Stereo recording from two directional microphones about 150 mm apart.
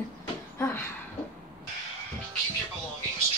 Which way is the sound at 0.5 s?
15° left (ahead or behind).